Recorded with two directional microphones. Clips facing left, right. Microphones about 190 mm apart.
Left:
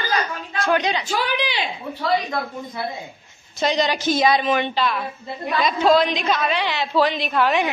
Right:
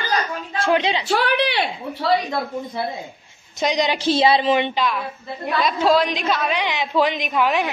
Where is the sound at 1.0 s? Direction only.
65° right (ahead or behind).